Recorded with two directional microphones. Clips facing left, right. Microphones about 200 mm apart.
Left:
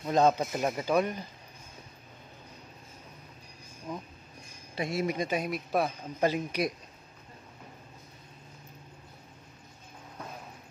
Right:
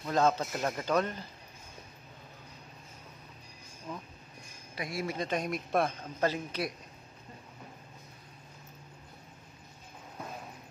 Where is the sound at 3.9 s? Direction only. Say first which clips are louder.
Left 3 dB; 10° left (ahead or behind).